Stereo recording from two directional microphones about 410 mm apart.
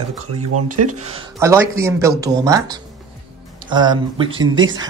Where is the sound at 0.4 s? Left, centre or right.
Right.